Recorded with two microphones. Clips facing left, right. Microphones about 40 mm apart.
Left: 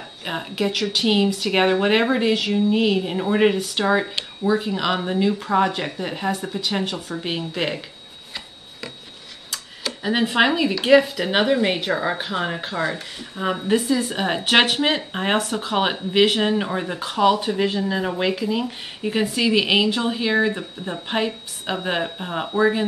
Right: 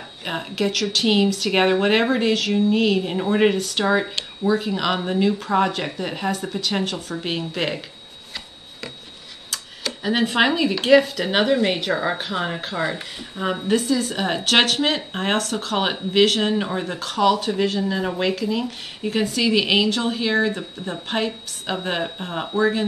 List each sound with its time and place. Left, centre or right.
0.2 s a woman's voice: centre
9.5 s tick-tock: centre
10.8 s a woman's voice: centre
13.7 s a woman's voice: centre
15.7 s a woman's voice: centre
17.0 s a woman's voice: centre